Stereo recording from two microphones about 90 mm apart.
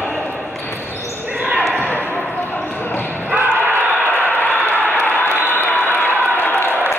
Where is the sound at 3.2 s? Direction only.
25° right (ahead or behind).